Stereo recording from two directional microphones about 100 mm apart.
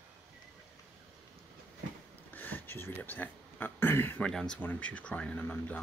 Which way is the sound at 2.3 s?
15° left (ahead or behind).